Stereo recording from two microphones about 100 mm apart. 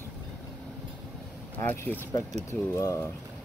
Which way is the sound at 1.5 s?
20° left (ahead or behind).